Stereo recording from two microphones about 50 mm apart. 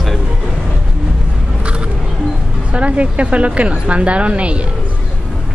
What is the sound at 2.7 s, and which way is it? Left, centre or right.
A woman's voice, right.